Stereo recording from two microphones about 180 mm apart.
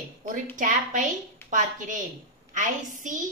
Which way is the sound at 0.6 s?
45° right (ahead or behind).